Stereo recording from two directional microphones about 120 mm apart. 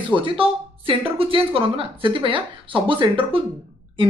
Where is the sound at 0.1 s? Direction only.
45° right (ahead or behind).